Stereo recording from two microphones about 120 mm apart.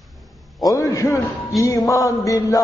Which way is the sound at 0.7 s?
30° left (ahead or behind).